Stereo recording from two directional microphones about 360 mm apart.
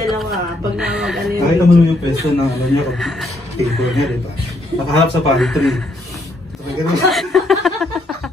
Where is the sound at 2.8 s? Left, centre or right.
Centre.